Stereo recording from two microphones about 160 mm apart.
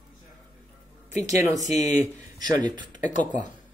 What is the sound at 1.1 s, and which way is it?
Speech, 45° left (ahead or behind).